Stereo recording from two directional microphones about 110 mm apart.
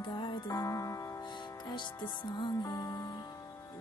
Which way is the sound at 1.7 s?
45° left (ahead or behind).